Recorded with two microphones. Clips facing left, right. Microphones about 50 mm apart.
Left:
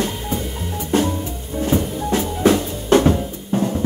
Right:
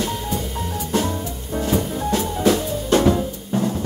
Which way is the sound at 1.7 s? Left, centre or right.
Left.